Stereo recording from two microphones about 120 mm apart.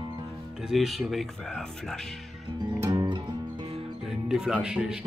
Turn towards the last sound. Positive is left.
turn(degrees=-5)  # may be behind; listen again after turning